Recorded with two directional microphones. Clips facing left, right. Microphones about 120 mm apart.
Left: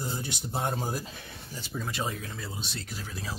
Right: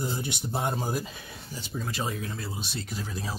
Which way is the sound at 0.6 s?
Centre (ahead or behind).